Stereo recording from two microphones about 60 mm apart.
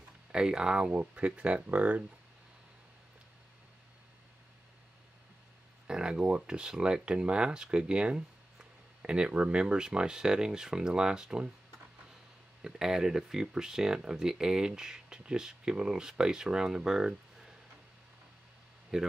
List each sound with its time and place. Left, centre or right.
0.3 s speech: centre
5.9 s speech: centre
12.6 s speech: centre
18.9 s speech: centre